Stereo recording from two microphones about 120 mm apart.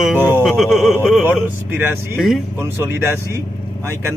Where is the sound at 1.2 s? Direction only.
15° right (ahead or behind).